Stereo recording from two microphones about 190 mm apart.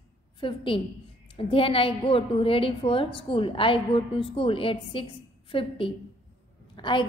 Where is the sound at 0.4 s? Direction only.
25° left (ahead or behind).